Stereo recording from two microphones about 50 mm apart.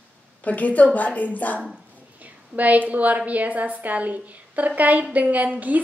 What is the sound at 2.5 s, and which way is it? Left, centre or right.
A woman's voice, right.